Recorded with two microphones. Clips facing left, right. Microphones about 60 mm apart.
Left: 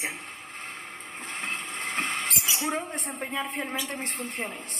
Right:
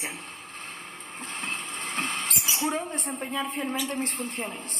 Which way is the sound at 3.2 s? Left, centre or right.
Left.